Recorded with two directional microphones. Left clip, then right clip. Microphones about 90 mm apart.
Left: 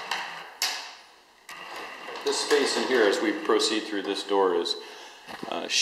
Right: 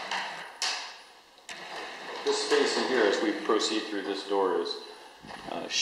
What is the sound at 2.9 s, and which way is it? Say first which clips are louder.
Speech: left 3 dB; 20° left (ahead or behind).